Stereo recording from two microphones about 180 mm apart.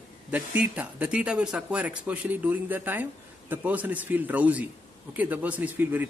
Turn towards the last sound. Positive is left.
turn(degrees=-10)  # may be behind; listen again after turning